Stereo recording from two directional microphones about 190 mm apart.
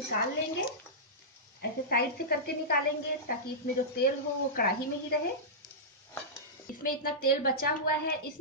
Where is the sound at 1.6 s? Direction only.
55° left (ahead or behind).